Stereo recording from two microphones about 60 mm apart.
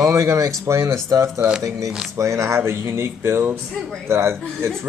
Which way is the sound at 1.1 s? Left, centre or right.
Right.